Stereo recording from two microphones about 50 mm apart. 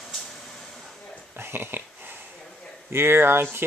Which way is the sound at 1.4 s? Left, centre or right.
Right.